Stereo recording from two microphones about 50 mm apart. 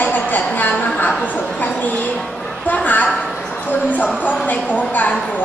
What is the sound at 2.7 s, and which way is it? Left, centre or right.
A woman's voice, left.